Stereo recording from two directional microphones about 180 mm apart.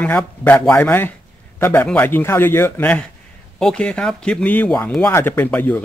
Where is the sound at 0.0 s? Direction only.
10° left (ahead or behind).